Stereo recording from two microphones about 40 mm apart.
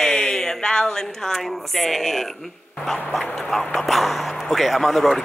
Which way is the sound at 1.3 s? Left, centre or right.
Centre.